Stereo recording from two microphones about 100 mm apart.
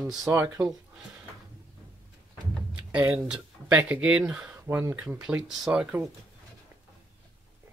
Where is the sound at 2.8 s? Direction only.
15° right (ahead or behind).